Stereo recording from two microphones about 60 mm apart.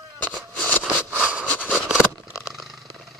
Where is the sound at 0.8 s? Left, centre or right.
Centre.